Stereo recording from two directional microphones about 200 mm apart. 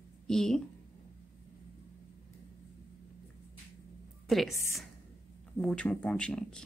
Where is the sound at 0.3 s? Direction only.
5° left (ahead or behind).